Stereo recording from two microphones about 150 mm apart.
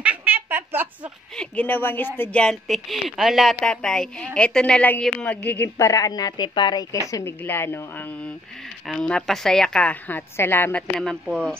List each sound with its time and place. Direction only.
0.0 s a sound: 10° right (ahead or behind)
1.3 s speech: 5° left (ahead or behind)
8.8 s speech: 5° left (ahead or behind)
11.0 s speech: 5° left (ahead or behind)